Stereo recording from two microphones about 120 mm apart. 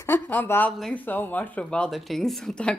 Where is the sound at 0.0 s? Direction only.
15° left (ahead or behind).